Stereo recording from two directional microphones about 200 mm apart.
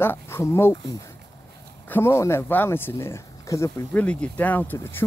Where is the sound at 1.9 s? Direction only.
10° left (ahead or behind).